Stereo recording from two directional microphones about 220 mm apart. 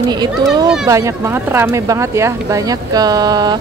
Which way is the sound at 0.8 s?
15° right (ahead or behind).